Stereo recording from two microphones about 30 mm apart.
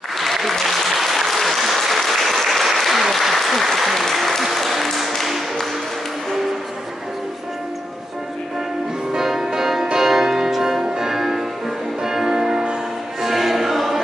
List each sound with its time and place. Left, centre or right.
0.2 s applause: centre
9.1 s music: centre
13.2 s music: centre